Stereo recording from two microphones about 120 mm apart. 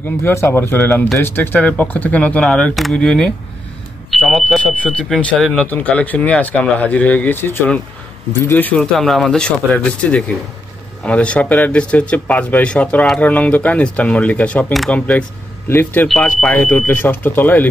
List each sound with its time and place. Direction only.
0.2 s speech: 20° left (ahead or behind)
8.9 s speech: centre (ahead or behind)